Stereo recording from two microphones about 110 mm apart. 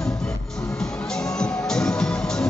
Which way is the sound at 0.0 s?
5° left (ahead or behind).